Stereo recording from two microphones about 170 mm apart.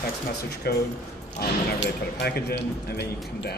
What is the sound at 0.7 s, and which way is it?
Speech, 65° left (ahead or behind).